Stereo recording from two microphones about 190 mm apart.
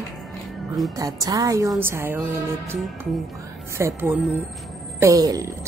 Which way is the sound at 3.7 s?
15° right (ahead or behind).